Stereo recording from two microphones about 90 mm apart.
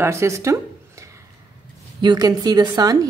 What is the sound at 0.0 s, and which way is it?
Speech, 30° right (ahead or behind).